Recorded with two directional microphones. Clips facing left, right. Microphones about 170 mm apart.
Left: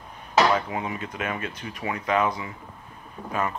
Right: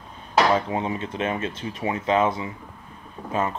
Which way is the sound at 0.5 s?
25° right (ahead or behind).